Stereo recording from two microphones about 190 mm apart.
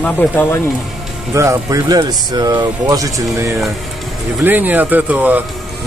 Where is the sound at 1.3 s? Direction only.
15° right (ahead or behind).